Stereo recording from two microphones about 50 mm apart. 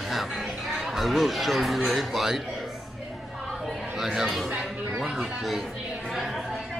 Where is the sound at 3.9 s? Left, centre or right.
Centre.